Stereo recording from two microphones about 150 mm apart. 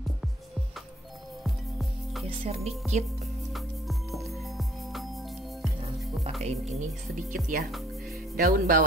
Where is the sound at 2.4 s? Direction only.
45° right (ahead or behind).